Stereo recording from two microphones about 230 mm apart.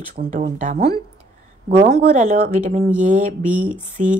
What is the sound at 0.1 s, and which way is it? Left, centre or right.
Speech, right.